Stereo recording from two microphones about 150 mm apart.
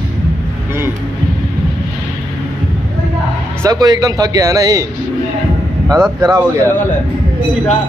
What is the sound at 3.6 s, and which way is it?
Speech, 25° right (ahead or behind).